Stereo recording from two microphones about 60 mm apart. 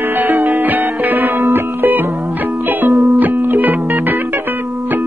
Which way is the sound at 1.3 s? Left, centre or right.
Right.